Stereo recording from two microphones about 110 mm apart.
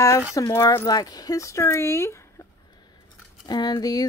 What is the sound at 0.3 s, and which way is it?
Speech, 25° left (ahead or behind).